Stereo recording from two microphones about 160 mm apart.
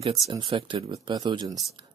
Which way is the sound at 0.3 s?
30° right (ahead or behind).